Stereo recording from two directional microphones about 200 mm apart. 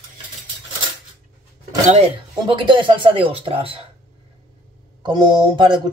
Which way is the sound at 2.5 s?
25° right (ahead or behind).